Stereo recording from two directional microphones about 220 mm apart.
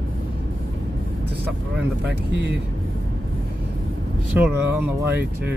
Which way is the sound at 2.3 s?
50° right (ahead or behind).